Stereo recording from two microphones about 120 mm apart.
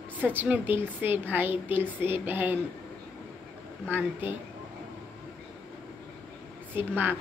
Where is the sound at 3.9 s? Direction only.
15° right (ahead or behind).